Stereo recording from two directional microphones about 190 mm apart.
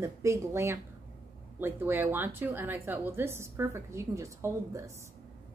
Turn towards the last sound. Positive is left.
turn(degrees=-15)  # may be behind; listen again after turning